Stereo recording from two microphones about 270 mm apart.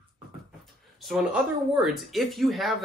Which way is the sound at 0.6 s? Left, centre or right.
Centre.